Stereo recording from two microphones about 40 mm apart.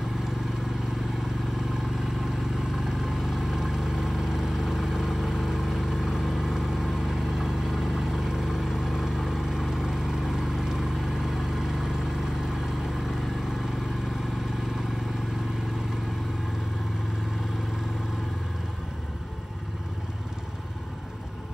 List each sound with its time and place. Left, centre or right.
2.7 s vehicle: centre